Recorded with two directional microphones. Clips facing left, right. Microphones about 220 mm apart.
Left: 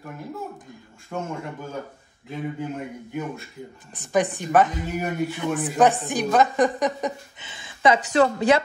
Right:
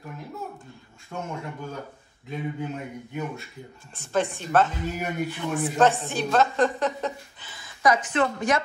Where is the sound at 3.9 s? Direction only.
15° left (ahead or behind).